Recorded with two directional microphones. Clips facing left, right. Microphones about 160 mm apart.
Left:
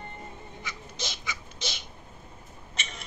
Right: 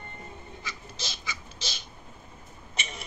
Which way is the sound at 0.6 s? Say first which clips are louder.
Left 4 dB; 20° left (ahead or behind).